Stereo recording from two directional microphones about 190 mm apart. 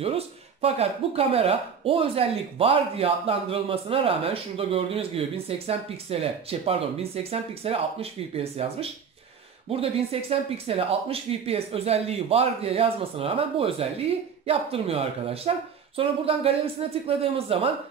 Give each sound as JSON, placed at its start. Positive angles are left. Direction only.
{"t": 0.0, "sound": "speech", "side_deg": -30}